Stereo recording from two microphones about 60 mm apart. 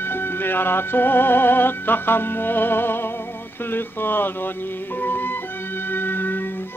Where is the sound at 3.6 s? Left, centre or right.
Left.